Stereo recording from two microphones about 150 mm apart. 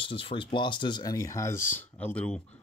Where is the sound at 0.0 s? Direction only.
35° left (ahead or behind); by 2.4 s 5° left (ahead or behind).